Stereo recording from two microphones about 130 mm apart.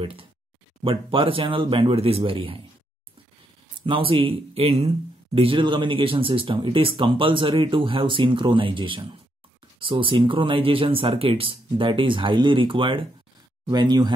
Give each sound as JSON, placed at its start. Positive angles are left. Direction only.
{"t": 0.0, "sound": "speech", "side_deg": -45}
{"t": 3.8, "sound": "speech", "side_deg": -45}